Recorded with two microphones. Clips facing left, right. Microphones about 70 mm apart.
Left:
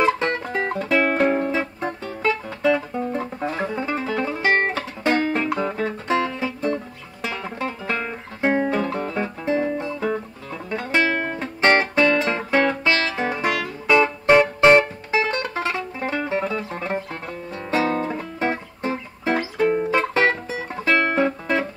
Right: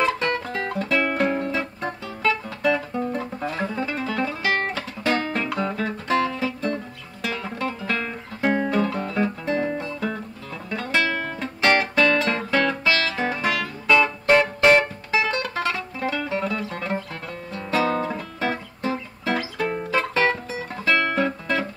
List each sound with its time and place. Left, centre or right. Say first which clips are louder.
0.0 s music: left 2 dB; left
0.7 s music: left 2 dB; centre
2.2 s guitar: left 2 dB; centre
3.2 s music: left 2 dB; left
5.1 s music: left 4 dB; centre
9.8 s guitar: left 3 dB; centre
10.7 s music: left 2 dB; left